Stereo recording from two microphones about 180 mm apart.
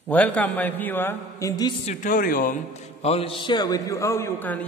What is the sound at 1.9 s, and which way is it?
Speech, 50° left (ahead or behind).